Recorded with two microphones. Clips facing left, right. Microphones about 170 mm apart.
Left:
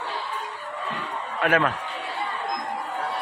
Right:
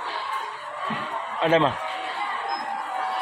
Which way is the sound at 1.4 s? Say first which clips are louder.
Right 2 dB; 25° right (ahead or behind).